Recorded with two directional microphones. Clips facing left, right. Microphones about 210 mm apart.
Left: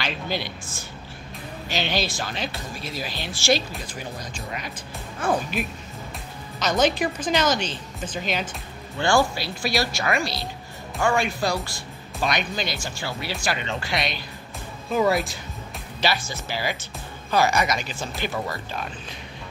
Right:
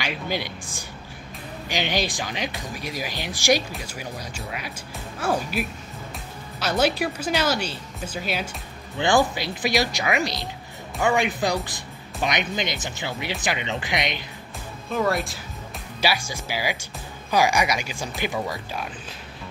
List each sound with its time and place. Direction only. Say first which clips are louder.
0.0 s speech: even; 15° right (ahead or behind)
14.9 s speech: left 2 dB; centre (ahead or behind)
16.0 s speech: even; 10° right (ahead or behind)